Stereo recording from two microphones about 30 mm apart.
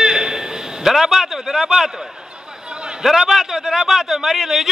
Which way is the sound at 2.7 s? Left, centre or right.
Right.